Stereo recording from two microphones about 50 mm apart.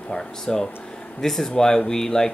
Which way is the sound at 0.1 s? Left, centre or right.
Centre.